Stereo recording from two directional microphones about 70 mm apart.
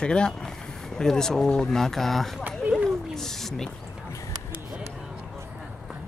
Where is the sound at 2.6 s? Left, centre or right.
Centre.